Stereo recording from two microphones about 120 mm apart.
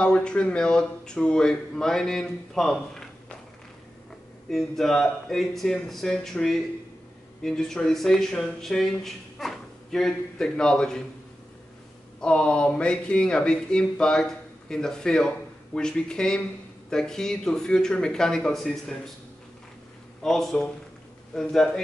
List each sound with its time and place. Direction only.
0.0 s speech: 10° left (ahead or behind)
4.5 s speech: centre (ahead or behind)
12.2 s speech: 10° left (ahead or behind)
20.2 s speech: 5° left (ahead or behind)